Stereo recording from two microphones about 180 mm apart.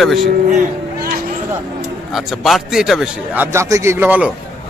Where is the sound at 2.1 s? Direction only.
Centre (ahead or behind).